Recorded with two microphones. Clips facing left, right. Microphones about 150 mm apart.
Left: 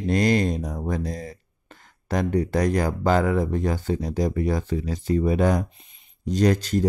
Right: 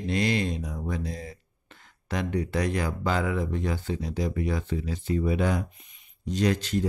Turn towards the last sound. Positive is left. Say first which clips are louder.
# left 5 dB
turn(degrees=40)  # may be behind; listen again after turning